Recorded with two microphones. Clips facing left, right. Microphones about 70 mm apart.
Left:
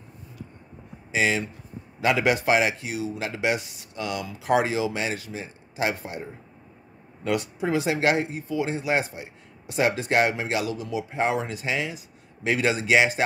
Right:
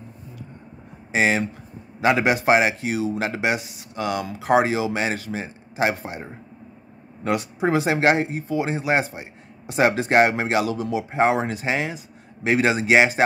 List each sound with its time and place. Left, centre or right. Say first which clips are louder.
1.1 s a man's voice: right 4 dB; right
2.2 s a man's voice: right 2 dB; right
3.3 s speech: left 1 dB; centre
3.9 s a man's voice: right 5 dB; right
7.7 s a man's voice: right 3 dB; right